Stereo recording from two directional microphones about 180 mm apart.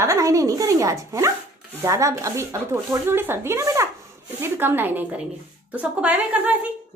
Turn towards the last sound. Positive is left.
turn(degrees=-5)  # may be behind; listen again after turning